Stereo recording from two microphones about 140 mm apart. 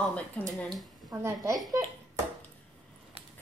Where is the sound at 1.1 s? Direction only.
20° right (ahead or behind).